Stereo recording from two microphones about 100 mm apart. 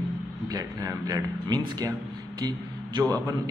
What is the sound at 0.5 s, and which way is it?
A man's voice, 35° right (ahead or behind).